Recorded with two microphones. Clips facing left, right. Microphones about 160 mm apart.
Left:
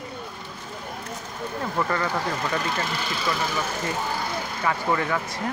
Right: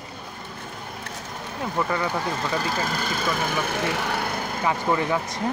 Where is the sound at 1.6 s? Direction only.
10° right (ahead or behind).